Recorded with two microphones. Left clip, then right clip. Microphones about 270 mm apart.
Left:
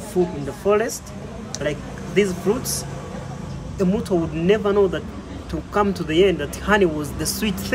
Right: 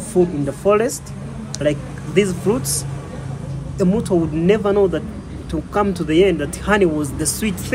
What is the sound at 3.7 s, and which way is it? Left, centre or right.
Speech, centre.